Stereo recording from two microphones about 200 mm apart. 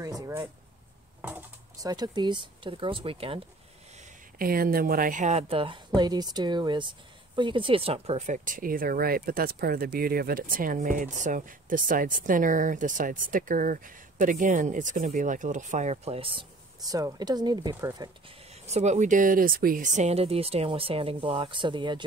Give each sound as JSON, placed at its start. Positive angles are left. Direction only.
{"t": 0.0, "sound": "a sound", "side_deg": -20}
{"t": 1.2, "sound": "speech", "side_deg": -15}
{"t": 4.4, "sound": "speech", "side_deg": -45}
{"t": 18.5, "sound": "speech", "side_deg": -35}